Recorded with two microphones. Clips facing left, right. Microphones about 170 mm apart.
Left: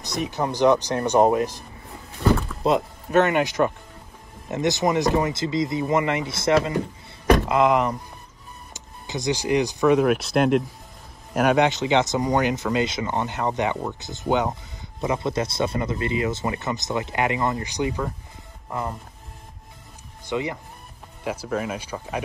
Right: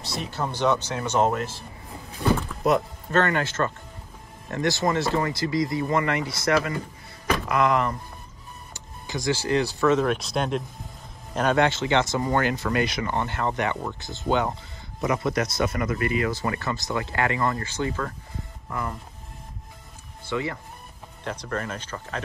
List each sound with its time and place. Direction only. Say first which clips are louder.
0.0 s speech: left 4 dB; 15° left (ahead or behind)
2.6 s speech: left 1 dB; 20° left (ahead or behind); by 10.6 s centre (ahead or behind)
11.3 s speech: left 3 dB; 15° left (ahead or behind)
20.2 s speech: left 2 dB; 20° left (ahead or behind)
21.2 s speech: left 4 dB; 5° left (ahead or behind)